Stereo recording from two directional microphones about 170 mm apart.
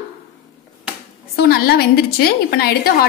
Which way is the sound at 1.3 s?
65° left (ahead or behind).